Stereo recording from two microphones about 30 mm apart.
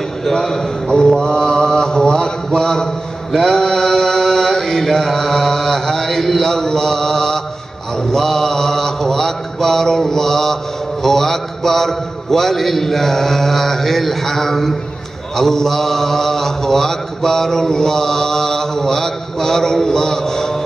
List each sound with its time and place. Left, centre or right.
0.2 s a man's voice: centre
1.2 s mantra: left
1.8 s a sound: left
3.5 s mantra: centre